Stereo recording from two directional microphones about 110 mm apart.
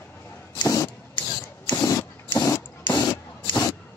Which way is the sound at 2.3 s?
35° left (ahead or behind).